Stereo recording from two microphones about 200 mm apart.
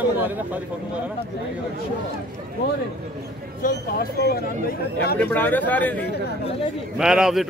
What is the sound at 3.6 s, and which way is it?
Speech, 45° left (ahead or behind).